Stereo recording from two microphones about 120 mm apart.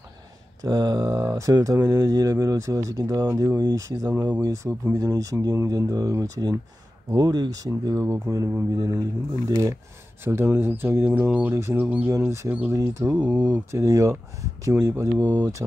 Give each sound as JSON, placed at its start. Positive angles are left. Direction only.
{"t": 0.6, "sound": "speech", "side_deg": -30}
{"t": 4.1, "sound": "speech", "side_deg": -15}
{"t": 4.4, "sound": "speech", "side_deg": -25}
{"t": 12.1, "sound": "speech", "side_deg": -25}
{"t": 13.7, "sound": "speech", "side_deg": -25}